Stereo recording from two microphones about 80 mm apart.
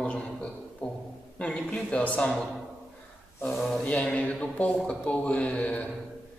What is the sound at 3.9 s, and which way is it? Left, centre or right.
A man's voice, centre.